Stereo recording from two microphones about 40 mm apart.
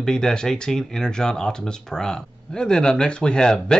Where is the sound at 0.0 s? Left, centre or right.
Centre.